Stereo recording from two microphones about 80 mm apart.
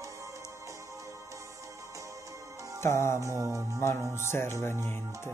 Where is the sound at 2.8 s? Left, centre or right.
Left.